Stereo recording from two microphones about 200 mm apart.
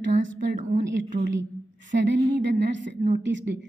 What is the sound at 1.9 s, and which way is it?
A woman's voice, 60° right (ahead or behind).